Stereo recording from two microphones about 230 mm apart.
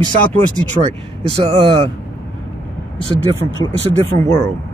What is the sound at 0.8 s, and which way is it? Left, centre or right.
Speech, right.